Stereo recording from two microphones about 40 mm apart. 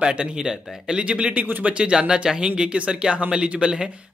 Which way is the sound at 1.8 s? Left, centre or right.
Right.